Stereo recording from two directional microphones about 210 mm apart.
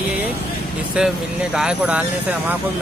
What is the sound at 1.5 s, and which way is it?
Speech, 5° right (ahead or behind).